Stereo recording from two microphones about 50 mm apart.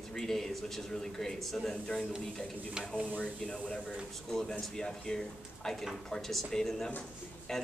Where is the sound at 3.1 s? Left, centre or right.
Centre.